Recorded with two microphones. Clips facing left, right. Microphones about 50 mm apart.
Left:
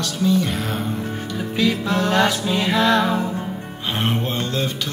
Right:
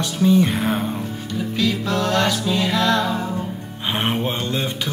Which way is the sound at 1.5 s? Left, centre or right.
Centre.